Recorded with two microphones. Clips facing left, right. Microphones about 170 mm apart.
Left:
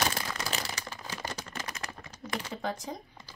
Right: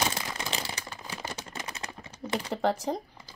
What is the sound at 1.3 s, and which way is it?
Typing, 25° right (ahead or behind).